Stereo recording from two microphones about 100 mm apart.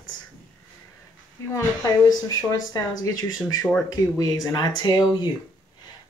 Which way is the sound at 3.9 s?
40° left (ahead or behind).